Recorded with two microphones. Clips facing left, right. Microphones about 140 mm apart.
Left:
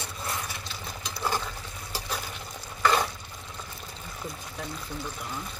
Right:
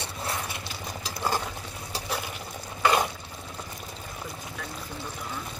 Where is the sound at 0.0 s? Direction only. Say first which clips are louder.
Right 2 dB; 25° right (ahead or behind).